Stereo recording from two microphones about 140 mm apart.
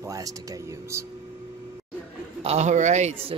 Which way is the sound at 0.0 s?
25° right (ahead or behind).